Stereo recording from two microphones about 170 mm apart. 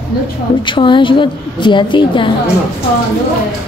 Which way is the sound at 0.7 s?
30° left (ahead or behind).